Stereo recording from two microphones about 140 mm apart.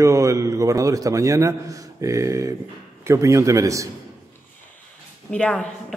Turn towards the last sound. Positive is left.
turn(degrees=5)  # may be behind; listen again after turning